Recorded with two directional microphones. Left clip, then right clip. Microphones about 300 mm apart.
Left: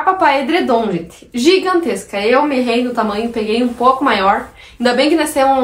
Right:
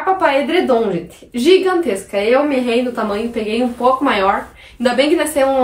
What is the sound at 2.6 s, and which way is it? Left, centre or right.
A woman's voice, centre.